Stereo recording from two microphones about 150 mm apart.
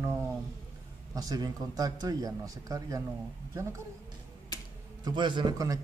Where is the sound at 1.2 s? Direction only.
25° right (ahead or behind).